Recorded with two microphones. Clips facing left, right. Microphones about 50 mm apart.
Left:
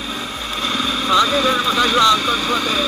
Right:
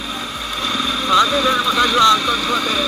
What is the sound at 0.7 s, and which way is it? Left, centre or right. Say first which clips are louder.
Vehicle: even; centre.